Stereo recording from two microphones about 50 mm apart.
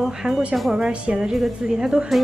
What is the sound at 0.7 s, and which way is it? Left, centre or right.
Speech, centre.